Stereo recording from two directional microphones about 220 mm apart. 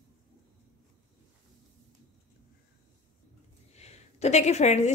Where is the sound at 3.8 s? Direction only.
30° left (ahead or behind).